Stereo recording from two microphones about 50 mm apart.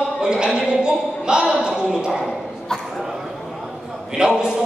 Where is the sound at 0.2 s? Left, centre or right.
Centre.